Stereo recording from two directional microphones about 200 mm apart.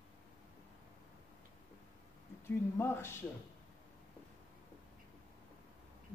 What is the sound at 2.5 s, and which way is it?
Speech, 10° left (ahead or behind).